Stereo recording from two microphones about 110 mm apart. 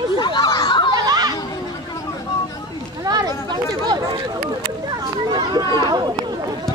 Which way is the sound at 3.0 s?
35° right (ahead or behind).